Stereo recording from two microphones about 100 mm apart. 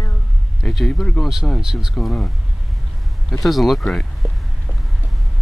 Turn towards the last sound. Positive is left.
turn(degrees=0)  # may be behind; listen again after turning